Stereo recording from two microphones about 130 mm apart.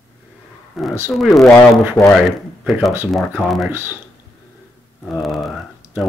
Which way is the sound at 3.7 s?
15° right (ahead or behind).